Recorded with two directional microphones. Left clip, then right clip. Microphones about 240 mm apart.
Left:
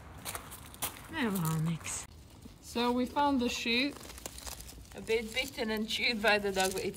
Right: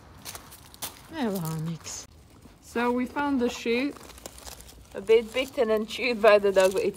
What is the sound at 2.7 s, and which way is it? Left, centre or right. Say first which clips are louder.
Speech: right 4 dB; centre.